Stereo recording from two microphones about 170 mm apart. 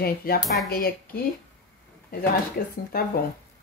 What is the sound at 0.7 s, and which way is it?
Speech, 65° left (ahead or behind).